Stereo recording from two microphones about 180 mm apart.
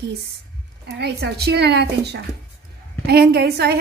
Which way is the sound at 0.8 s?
65° right (ahead or behind).